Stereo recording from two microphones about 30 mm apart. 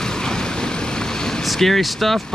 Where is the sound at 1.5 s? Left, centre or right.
Centre.